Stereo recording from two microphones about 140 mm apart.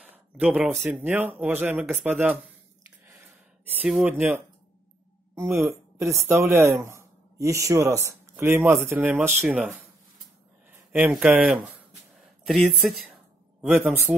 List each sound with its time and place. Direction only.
0.0 s a sound: 10° right (ahead or behind)
0.8 s speech: 10° right (ahead or behind)
3.6 s speech: 10° right (ahead or behind)
10.9 s a man's voice: 10° right (ahead or behind)